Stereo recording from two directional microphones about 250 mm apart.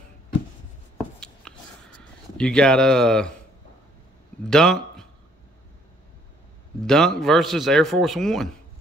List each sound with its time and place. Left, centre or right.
0.9 s a sound: centre
2.0 s speech: centre
4.5 s a man's voice: centre
6.8 s a man's voice: centre